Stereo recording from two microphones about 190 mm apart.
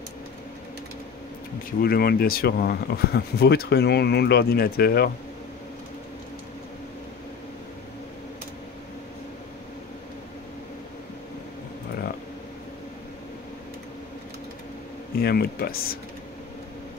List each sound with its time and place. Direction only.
1.8 s speech: 55° left (ahead or behind)
15.2 s speech: 55° left (ahead or behind)